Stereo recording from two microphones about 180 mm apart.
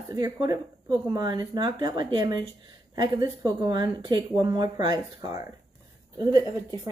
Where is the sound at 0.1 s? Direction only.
20° right (ahead or behind).